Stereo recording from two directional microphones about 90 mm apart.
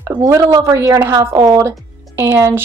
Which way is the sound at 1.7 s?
25° right (ahead or behind).